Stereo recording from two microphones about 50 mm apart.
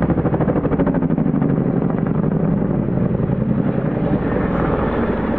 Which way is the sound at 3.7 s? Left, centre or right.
Left.